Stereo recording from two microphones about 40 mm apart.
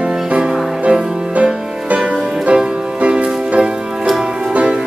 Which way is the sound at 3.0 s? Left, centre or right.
Right.